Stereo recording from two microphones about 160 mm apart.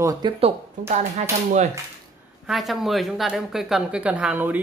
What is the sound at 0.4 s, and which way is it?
Speech, 45° right (ahead or behind).